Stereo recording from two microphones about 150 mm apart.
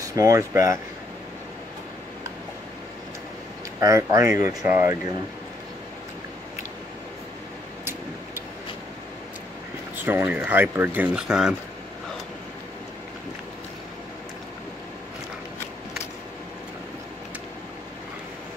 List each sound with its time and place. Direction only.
0.0 s speech: 20° right (ahead or behind)
3.8 s speech: 20° right (ahead or behind)
10.0 s speech: 10° right (ahead or behind)